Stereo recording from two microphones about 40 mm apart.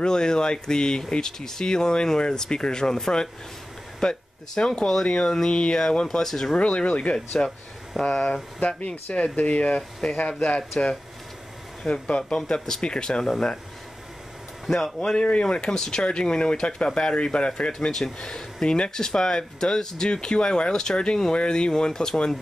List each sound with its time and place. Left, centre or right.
0.0 s speech: centre
4.0 s speech: left
6.5 s speech: left
8.0 s speech: centre
9.1 s speech: left
11.8 s speech: left
15.1 s speech: left
15.5 s speech: centre